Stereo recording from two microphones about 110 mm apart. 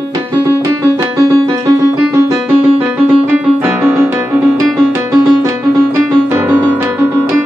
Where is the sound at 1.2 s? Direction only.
35° right (ahead or behind).